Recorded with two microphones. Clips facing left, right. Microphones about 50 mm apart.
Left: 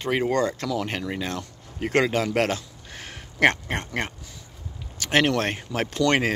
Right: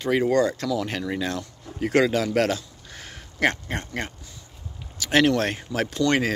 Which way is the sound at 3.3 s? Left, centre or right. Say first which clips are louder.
Left 3 dB; left.